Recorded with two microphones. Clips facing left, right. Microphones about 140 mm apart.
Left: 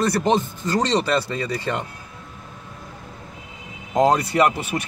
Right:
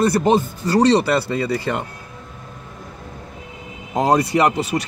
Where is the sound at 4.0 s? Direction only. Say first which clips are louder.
Right 1 dB; 20° right (ahead or behind).